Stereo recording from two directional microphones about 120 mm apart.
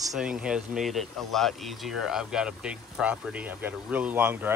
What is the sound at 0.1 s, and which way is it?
Speech, 10° right (ahead or behind).